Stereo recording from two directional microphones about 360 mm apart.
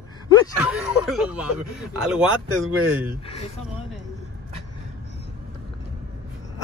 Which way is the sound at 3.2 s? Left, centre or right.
Centre.